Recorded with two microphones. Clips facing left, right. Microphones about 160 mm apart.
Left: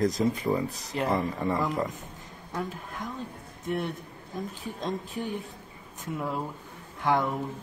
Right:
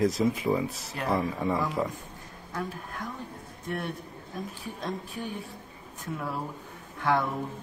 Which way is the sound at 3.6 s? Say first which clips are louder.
Left 3 dB; 20° left (ahead or behind).